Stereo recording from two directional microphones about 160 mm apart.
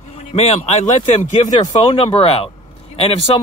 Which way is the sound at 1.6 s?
30° left (ahead or behind).